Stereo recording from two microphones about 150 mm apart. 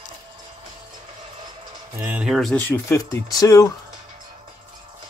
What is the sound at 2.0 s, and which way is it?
Speech, 15° right (ahead or behind).